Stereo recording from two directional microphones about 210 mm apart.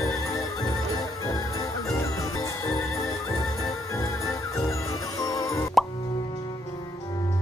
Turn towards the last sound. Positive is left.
turn(degrees=15)  # may be behind; listen again after turning